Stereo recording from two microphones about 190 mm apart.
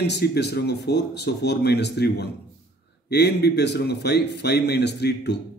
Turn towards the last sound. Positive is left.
turn(degrees=60)  # may be behind; listen again after turning